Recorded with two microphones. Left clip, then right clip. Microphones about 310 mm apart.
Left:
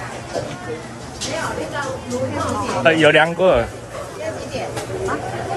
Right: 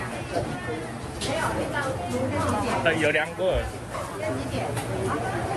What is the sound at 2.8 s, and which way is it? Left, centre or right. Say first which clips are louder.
Speech: left 12 dB; centre.